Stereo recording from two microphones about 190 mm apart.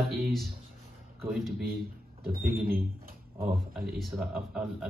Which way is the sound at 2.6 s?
50° right (ahead or behind).